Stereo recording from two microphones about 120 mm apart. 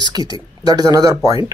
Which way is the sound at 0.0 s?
35° right (ahead or behind).